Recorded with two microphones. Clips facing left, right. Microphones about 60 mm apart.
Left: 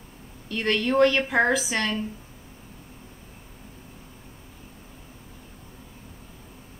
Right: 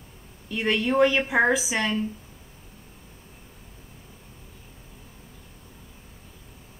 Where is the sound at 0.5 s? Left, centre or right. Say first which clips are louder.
Even; centre.